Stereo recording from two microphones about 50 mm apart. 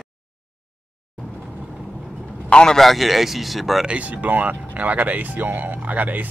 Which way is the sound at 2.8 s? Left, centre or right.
Centre.